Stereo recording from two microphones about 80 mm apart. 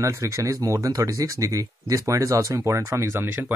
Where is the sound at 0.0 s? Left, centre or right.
Right.